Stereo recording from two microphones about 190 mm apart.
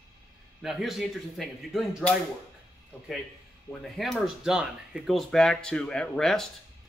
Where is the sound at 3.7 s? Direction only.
Centre (ahead or behind).